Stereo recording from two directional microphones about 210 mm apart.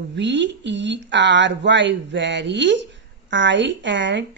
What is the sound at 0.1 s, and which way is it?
A woman's voice, 55° right (ahead or behind).